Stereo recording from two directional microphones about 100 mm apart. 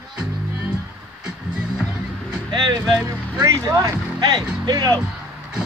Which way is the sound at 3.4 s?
35° right (ahead or behind).